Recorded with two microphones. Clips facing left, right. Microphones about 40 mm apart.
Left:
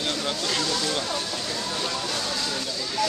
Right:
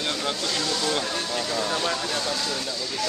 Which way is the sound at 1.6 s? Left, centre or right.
Right.